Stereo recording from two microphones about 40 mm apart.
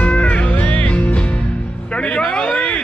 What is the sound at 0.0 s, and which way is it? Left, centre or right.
Music, left.